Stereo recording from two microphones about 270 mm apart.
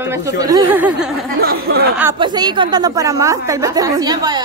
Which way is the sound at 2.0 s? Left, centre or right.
Centre.